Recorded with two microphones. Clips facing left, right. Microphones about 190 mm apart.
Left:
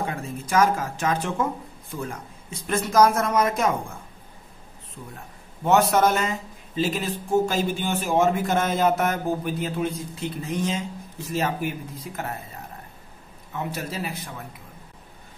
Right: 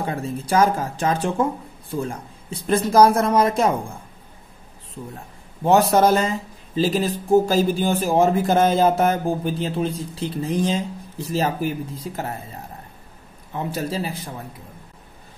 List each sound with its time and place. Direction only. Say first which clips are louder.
0.0 s speech: right 4 dB; 35° right (ahead or behind)
5.6 s speech: right 3 dB; 30° right (ahead or behind)
13.5 s speech: right 5 dB; 30° right (ahead or behind)